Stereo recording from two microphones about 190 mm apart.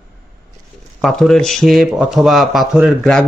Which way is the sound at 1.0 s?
Centre (ahead or behind).